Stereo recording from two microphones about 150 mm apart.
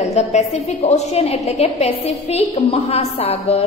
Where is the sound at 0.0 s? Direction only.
50° left (ahead or behind).